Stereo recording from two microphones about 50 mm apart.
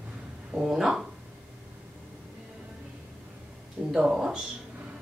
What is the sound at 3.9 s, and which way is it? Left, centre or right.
Speech, centre.